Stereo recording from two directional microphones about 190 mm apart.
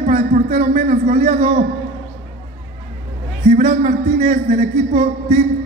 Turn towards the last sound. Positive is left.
turn(degrees=-40)  # may be behind; listen again after turning